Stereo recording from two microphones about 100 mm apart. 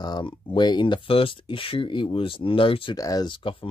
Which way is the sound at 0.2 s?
60° left (ahead or behind).